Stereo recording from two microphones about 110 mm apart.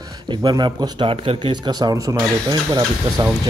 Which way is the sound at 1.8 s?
30° right (ahead or behind).